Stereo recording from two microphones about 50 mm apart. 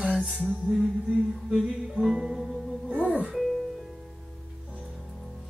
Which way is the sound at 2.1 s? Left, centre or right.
Centre.